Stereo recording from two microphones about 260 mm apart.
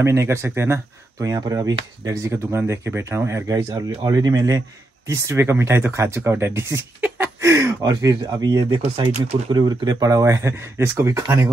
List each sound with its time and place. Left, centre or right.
0.0 s speech: centre